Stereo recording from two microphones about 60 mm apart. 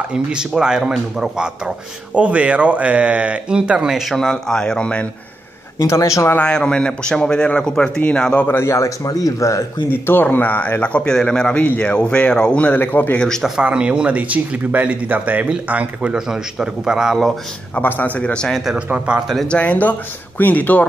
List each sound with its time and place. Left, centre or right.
0.1 s a man's voice: centre
4.1 s a man's voice: centre
5.8 s speech: left
6.5 s a man's voice: centre
8.6 s speech: left
9.8 s a man's voice: left
12.8 s a man's voice: left
13.6 s a man's voice: centre
17.7 s a man's voice: left
18.9 s speech: centre
19.4 s a man's voice: centre